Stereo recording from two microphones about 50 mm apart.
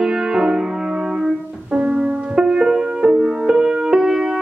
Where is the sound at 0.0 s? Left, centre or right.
Centre.